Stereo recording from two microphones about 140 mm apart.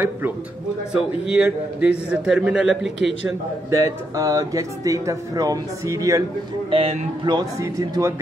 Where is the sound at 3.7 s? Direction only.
20° right (ahead or behind).